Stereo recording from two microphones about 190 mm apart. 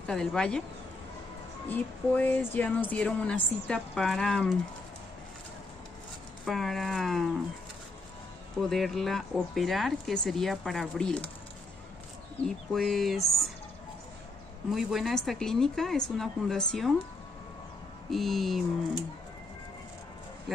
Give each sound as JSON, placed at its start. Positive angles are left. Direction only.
{"t": 0.0, "sound": "speech", "side_deg": 5}
{"t": 1.7, "sound": "speech", "side_deg": 10}
{"t": 6.4, "sound": "speech", "side_deg": 0}
{"t": 8.5, "sound": "speech", "side_deg": 0}
{"t": 12.7, "sound": "speech", "side_deg": 0}
{"t": 14.7, "sound": "speech", "side_deg": 0}
{"t": 18.1, "sound": "speech", "side_deg": 0}
{"t": 20.5, "sound": "speech", "side_deg": 0}